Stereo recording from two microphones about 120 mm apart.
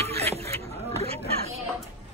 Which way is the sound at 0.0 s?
60° right (ahead or behind).